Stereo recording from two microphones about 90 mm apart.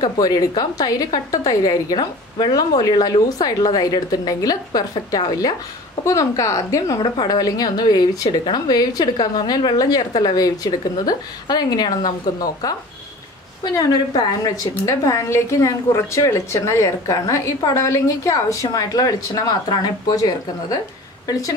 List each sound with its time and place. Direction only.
0.0 s a woman's voice: 45° left (ahead or behind)
6.0 s a woman's voice: 35° left (ahead or behind)